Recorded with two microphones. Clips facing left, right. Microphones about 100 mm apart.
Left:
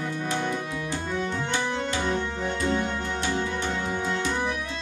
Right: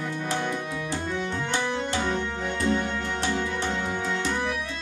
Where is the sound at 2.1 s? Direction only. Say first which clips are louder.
Left 1 dB; 20° left (ahead or behind).